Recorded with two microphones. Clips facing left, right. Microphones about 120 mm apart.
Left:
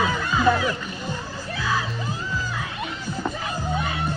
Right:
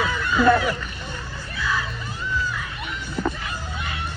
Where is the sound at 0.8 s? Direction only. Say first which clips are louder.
Left 4 dB; 35° left (ahead or behind).